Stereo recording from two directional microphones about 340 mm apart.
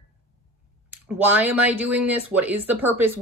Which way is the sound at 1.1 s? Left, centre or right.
Centre.